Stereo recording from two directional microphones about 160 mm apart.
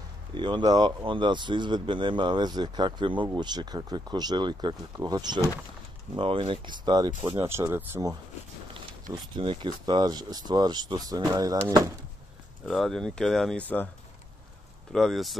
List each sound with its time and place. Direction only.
0.3 s speech: 30° right (ahead or behind)
7.3 s speech: 15° right (ahead or behind)
9.1 s speech: 30° right (ahead or behind)
12.6 s speech: centre (ahead or behind)
14.9 s speech: 5° left (ahead or behind)